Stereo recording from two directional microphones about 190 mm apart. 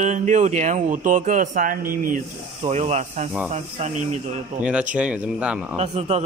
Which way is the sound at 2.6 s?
35° right (ahead or behind).